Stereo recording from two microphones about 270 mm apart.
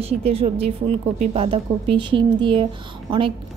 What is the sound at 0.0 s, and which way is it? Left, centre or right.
A woman's voice, right.